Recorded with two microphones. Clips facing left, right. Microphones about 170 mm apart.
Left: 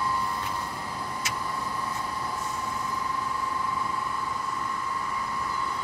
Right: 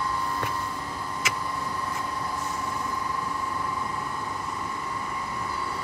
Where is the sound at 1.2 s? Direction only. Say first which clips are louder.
Right 5 dB; 90° right.